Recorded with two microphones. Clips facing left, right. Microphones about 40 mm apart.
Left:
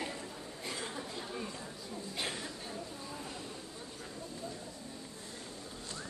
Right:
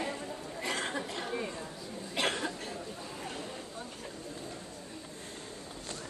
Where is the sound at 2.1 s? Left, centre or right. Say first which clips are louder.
Right 9 dB; right.